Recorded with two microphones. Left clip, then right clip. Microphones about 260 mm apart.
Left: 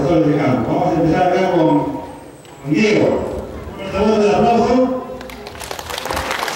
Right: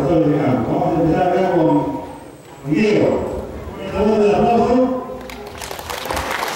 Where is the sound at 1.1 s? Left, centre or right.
Centre.